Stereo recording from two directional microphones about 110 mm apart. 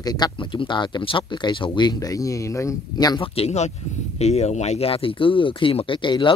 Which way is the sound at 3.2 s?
70° left (ahead or behind).